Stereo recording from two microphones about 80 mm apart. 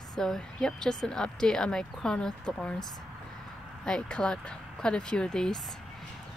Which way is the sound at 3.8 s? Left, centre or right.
Centre.